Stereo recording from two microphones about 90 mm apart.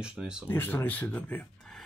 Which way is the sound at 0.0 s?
10° right (ahead or behind).